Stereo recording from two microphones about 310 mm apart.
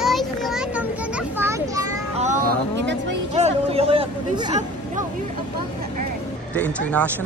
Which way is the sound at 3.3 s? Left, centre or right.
Centre.